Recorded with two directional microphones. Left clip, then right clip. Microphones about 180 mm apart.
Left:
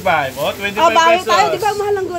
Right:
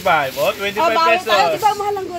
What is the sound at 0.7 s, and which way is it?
Speech, 5° left (ahead or behind).